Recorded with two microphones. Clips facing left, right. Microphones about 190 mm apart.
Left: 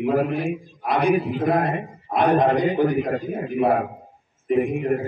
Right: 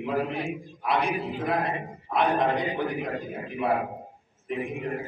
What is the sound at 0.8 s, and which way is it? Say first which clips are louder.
A man's voice: left 7 dB; 45° left (ahead or behind).